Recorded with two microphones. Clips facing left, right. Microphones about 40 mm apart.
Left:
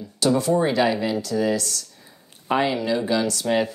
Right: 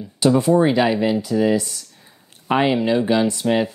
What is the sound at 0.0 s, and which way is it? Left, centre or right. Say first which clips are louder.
Speech: right 4 dB; right.